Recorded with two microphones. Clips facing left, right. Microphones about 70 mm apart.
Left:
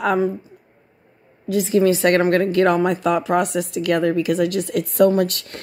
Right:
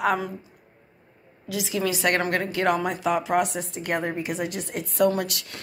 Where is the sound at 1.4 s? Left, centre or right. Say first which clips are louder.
Left 10 dB; left.